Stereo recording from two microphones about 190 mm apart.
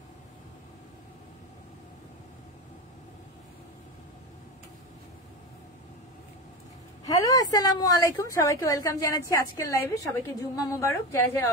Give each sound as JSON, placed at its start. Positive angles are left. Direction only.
{"t": 7.1, "sound": "a woman's voice", "side_deg": 20}